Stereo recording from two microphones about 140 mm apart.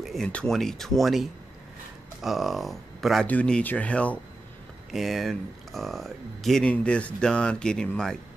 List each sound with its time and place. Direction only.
0.0 s speech: centre (ahead or behind)